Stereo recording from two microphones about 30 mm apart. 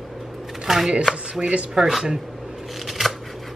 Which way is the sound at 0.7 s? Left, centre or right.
Centre.